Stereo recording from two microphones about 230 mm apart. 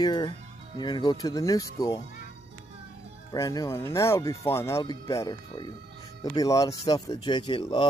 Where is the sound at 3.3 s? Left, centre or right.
Centre.